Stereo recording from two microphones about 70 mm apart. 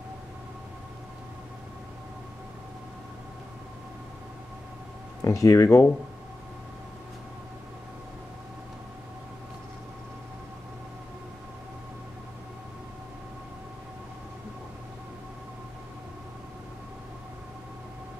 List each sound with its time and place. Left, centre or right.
5.2 s speech: left